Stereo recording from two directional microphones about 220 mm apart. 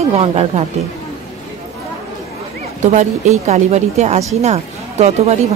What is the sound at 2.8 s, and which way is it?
A woman's voice, 35° right (ahead or behind).